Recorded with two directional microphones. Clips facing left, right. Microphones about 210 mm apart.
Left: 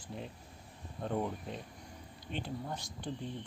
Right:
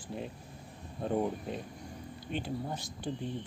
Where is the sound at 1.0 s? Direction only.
15° right (ahead or behind).